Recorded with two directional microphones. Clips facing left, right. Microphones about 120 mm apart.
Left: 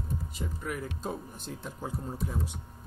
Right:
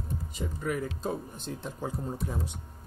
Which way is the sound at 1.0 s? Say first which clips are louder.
Right 3 dB; 10° left (ahead or behind).